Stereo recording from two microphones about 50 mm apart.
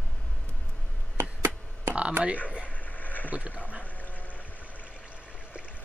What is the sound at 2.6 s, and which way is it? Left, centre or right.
Vehicle, left.